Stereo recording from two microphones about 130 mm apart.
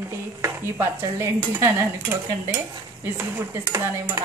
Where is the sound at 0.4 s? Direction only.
20° right (ahead or behind).